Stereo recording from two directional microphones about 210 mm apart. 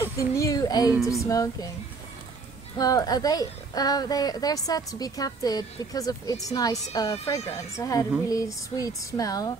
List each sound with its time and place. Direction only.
0.0 s a sound: 15° left (ahead or behind)
1.2 s a woman's voice: 15° left (ahead or behind)
2.8 s a woman's voice: 15° left (ahead or behind)